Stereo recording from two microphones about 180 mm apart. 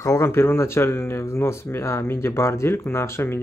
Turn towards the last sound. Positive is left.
turn(degrees=15)  # may be behind; listen again after turning